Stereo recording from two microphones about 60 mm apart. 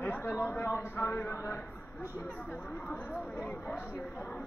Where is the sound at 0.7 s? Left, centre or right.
Left.